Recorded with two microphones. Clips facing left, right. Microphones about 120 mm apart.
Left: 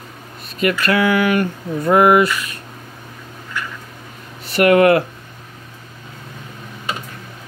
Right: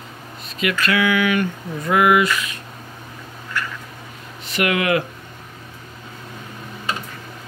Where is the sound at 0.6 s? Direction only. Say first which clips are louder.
Left 3 dB; 50° left (ahead or behind).